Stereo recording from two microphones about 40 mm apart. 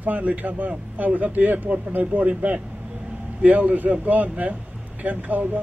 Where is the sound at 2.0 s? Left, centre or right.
Right.